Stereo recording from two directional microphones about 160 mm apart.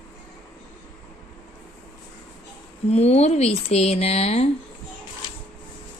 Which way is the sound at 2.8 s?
40° left (ahead or behind).